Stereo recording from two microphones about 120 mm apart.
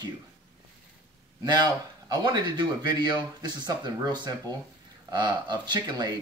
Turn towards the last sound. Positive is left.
turn(degrees=-35)  # may be behind; listen again after turning